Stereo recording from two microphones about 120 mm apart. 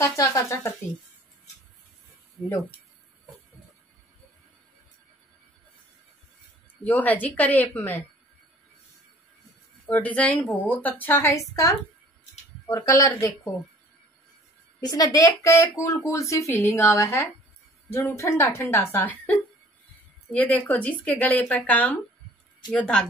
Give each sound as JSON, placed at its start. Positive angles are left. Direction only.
{"t": 0.0, "sound": "speech", "side_deg": 25}
{"t": 6.8, "sound": "a woman's voice", "side_deg": 15}
{"t": 9.8, "sound": "a woman's voice", "side_deg": 15}
{"t": 14.8, "sound": "speech", "side_deg": 30}
{"t": 20.3, "sound": "a woman's voice", "side_deg": 15}